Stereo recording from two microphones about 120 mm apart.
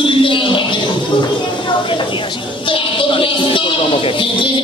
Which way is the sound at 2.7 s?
45° left (ahead or behind).